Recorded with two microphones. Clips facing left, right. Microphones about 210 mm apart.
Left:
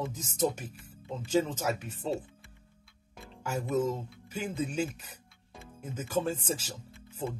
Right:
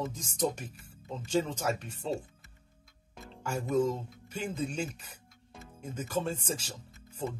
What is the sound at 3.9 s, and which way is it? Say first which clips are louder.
Speech: even; 5° left (ahead or behind).